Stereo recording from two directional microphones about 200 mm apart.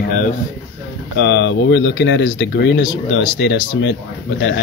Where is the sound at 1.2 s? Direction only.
60° left (ahead or behind).